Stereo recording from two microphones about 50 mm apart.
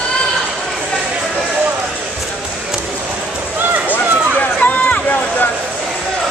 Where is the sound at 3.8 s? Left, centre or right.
Left.